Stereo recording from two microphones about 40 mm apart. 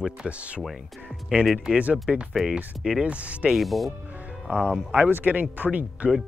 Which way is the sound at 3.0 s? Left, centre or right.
Right.